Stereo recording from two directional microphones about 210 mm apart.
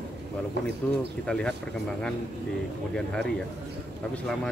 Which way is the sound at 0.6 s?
55° right (ahead or behind).